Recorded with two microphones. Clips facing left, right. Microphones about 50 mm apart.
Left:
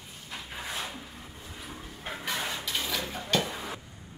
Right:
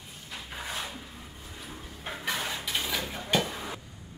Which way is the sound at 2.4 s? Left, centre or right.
Centre.